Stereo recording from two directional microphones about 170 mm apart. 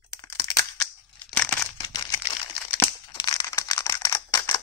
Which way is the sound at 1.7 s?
25° left (ahead or behind).